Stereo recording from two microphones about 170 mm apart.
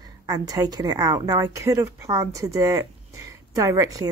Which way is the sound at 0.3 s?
20° right (ahead or behind).